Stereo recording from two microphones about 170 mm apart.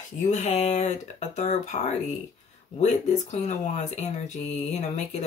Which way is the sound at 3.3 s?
45° left (ahead or behind).